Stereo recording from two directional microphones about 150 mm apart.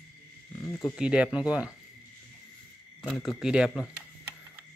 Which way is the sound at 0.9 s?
5° right (ahead or behind).